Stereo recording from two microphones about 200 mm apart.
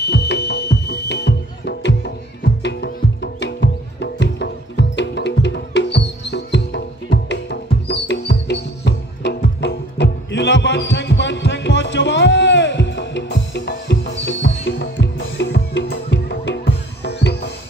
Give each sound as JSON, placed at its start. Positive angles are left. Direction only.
{"t": 0.0, "sound": "music", "side_deg": 60}